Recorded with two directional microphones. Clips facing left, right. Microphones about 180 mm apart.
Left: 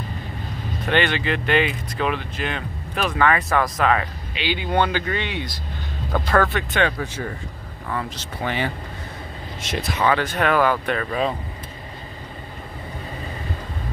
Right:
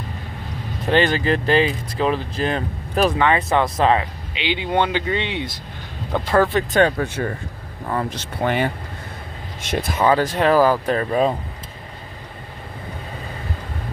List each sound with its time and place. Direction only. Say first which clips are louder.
0.8 s speech: right 4 dB; 35° right (ahead or behind)
3.2 s speech: right 2 dB; 25° right (ahead or behind)
8.1 s speech: right 5 dB; 55° right (ahead or behind)
9.8 s speech: right 3 dB; 50° right (ahead or behind)
10.0 s speech: right 4 dB; 35° right (ahead or behind)